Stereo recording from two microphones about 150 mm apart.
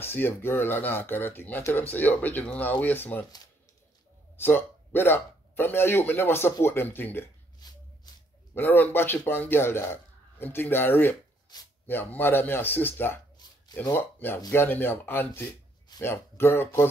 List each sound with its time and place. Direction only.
0.0 s speech: 15° left (ahead or behind)
4.4 s speech: 15° left (ahead or behind)
7.6 s shuffle: 25° left (ahead or behind)
8.1 s a sound: 25° left (ahead or behind)
8.5 s speech: 10° left (ahead or behind)
11.5 s speech: 30° left (ahead or behind)
11.9 s speech: 15° left (ahead or behind)
13.4 s a sound: 30° left (ahead or behind)
13.9 s speech: 15° left (ahead or behind)